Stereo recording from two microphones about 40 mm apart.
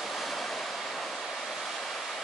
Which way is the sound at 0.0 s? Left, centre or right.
Centre.